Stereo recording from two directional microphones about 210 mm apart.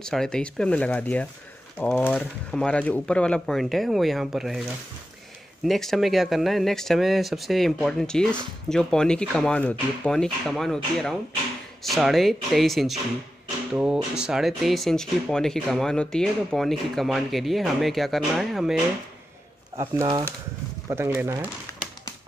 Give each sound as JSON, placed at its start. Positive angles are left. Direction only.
{"t": 0.0, "sound": "speech", "side_deg": 5}
{"t": 5.7, "sound": "speech", "side_deg": 0}
{"t": 20.0, "sound": "speech", "side_deg": -15}